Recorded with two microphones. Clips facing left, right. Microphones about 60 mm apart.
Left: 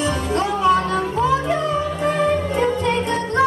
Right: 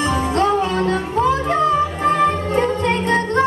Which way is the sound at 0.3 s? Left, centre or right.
Right.